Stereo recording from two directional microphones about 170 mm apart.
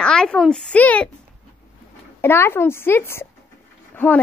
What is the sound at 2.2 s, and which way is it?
A woman's voice, 15° left (ahead or behind).